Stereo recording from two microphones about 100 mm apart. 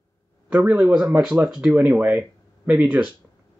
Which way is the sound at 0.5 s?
15° right (ahead or behind).